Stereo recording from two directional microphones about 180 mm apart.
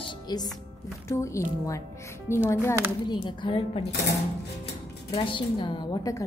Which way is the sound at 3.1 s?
25° left (ahead or behind).